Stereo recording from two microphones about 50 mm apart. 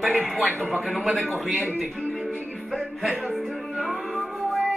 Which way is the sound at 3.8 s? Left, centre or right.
Centre.